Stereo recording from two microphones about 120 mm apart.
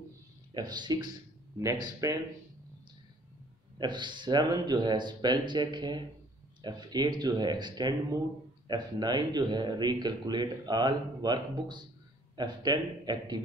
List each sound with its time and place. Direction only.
0.6 s speech: 35° right (ahead or behind)
3.7 s speech: 40° right (ahead or behind)